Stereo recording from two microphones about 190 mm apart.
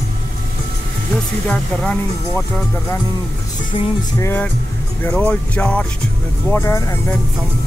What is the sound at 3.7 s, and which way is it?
Music, 25° left (ahead or behind).